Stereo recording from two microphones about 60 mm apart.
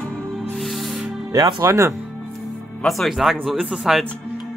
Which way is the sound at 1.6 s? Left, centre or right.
Right.